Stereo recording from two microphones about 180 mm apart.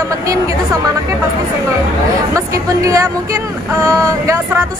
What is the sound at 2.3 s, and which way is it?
Speech, 20° right (ahead or behind).